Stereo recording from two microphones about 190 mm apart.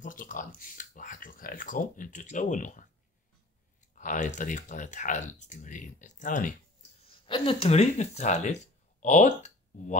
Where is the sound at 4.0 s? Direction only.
40° left (ahead or behind).